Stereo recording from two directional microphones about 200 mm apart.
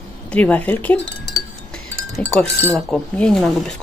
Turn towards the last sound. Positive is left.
turn(degrees=5)  # may be behind; listen again after turning